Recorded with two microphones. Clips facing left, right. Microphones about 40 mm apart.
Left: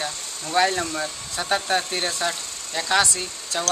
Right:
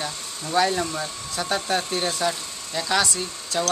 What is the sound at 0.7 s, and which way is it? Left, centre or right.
Speech, centre.